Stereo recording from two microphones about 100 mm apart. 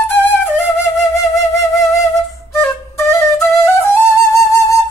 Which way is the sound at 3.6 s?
20° left (ahead or behind).